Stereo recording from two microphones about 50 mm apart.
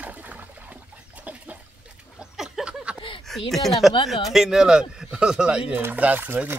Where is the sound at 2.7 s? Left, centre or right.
Right.